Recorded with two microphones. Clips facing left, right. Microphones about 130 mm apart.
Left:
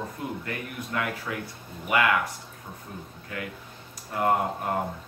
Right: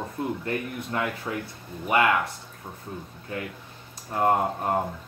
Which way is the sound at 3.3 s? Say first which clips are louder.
Right 2 dB; 30° right (ahead or behind).